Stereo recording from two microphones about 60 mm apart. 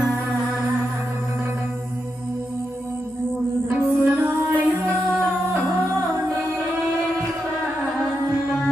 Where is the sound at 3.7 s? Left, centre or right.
Right.